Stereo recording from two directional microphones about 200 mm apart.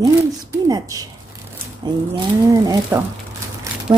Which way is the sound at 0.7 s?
20° right (ahead or behind).